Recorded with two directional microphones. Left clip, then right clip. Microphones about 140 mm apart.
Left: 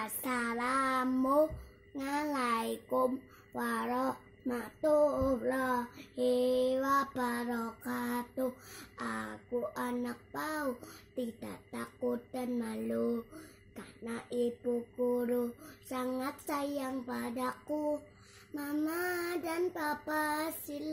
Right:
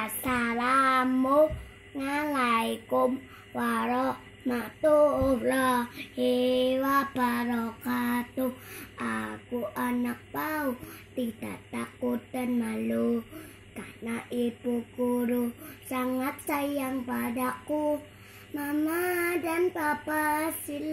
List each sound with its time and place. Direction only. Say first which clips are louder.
0.0 s speech: right 6 dB; 25° left (ahead or behind)
2.0 s child singing: right 6 dB; 30° left (ahead or behind)
4.8 s a sound: right 6 dB; 35° left (ahead or behind)
5.4 s child singing: right 7 dB; centre (ahead or behind)
6.1 s child singing: right 4 dB; 25° left (ahead or behind)
13.4 s beatboxing: right 7 dB; 15° left (ahead or behind)
14.3 s child singing: right 2 dB; 25° left (ahead or behind)
15.4 s speech: right 5 dB; 15° left (ahead or behind)